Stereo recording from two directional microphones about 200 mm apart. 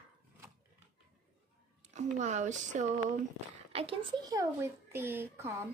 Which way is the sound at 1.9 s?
35° right (ahead or behind).